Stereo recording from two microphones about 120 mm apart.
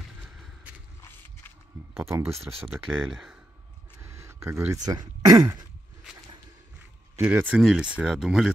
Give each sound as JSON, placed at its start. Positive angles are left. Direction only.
{"t": 0.2, "sound": "a sound", "side_deg": -5}
{"t": 2.0, "sound": "speech", "side_deg": -20}
{"t": 2.9, "sound": "speech", "side_deg": -5}
{"t": 4.0, "sound": "a sound", "side_deg": -25}
{"t": 4.8, "sound": "speech", "side_deg": -35}
{"t": 7.2, "sound": "speech", "side_deg": -15}